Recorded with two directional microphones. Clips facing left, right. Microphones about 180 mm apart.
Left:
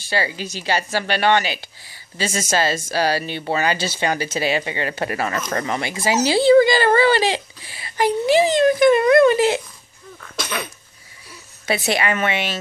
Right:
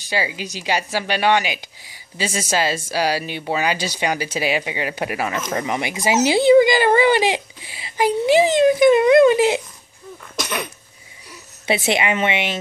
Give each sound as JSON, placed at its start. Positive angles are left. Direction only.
{"t": 0.1, "sound": "speech", "side_deg": -10}
{"t": 10.3, "sound": "cough", "side_deg": -15}
{"t": 11.6, "sound": "speech", "side_deg": -25}